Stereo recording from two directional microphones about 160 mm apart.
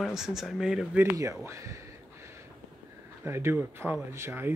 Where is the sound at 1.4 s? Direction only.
20° right (ahead or behind).